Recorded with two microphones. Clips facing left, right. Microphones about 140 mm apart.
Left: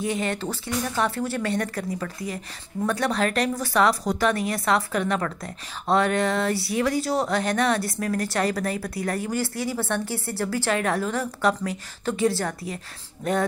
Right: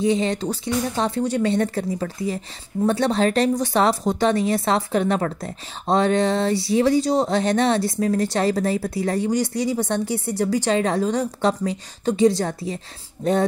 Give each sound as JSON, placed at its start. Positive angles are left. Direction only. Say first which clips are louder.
{"t": 0.0, "sound": "a woman's voice", "louder": "right 6 dB", "side_deg": -25}